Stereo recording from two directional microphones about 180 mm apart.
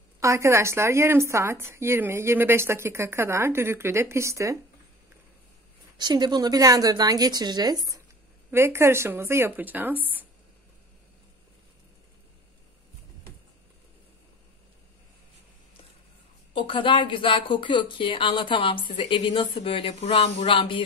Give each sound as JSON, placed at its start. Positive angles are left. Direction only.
{"t": 0.2, "sound": "speech", "side_deg": -15}
{"t": 5.9, "sound": "a woman's voice", "side_deg": -25}
{"t": 16.5, "sound": "speech", "side_deg": 25}